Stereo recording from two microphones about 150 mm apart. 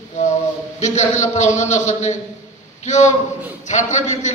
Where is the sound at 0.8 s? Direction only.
50° left (ahead or behind).